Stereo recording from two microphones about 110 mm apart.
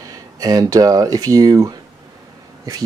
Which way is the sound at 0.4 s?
35° right (ahead or behind).